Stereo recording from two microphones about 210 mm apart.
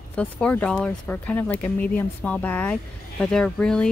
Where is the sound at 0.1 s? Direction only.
5° left (ahead or behind).